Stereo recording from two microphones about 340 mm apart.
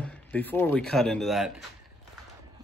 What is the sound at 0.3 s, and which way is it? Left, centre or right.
Speech, centre.